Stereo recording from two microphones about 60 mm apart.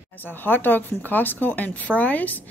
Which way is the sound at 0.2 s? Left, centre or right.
Left.